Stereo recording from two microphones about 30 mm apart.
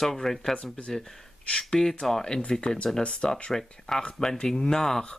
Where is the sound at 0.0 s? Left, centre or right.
Centre.